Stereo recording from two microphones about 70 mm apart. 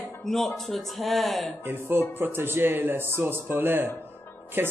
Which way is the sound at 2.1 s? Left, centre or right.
Right.